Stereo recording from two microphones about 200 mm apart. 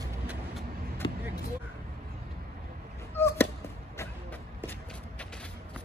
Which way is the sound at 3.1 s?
10° left (ahead or behind).